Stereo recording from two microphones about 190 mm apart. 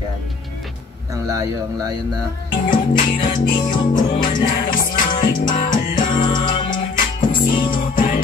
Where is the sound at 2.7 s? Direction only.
45° left (ahead or behind).